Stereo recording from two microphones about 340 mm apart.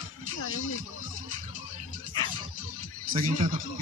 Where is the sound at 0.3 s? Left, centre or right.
Left.